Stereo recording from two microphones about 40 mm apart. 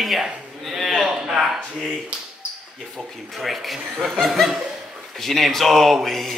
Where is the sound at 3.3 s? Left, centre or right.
Centre.